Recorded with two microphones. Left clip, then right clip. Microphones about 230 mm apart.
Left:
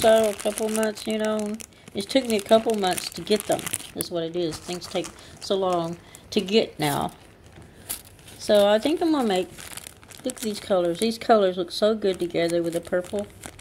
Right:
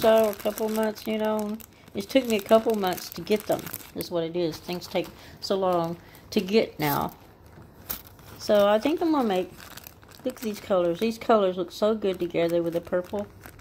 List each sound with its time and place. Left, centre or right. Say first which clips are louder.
0.0 s speech: left 2 dB; centre
3.9 s speech: right 1 dB; centre
8.5 s speech: left 2 dB; centre